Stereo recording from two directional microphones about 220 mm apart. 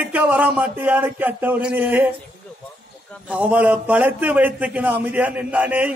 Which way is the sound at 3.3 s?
5° right (ahead or behind).